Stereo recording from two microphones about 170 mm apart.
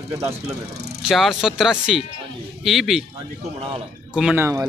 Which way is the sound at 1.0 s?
Centre (ahead or behind).